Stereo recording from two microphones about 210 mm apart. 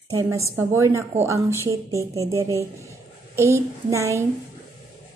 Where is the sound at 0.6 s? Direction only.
15° right (ahead or behind).